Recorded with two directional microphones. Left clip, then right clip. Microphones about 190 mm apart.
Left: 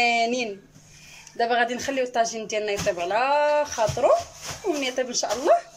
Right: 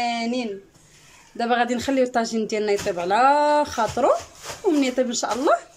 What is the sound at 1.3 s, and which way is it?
Speech, 15° right (ahead or behind).